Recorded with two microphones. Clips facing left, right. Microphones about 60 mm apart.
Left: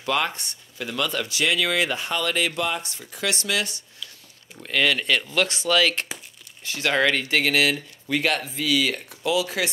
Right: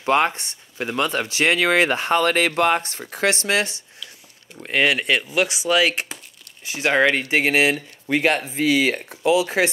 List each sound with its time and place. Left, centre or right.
0.0 s speech: right
3.3 s speech: right
5.2 s speech: centre; by 9.7 s right